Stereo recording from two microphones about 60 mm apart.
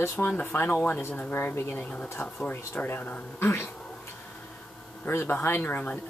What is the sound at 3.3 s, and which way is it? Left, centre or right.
Speech, left.